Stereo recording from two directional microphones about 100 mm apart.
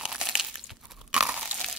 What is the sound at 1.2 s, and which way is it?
Crunch, 15° right (ahead or behind).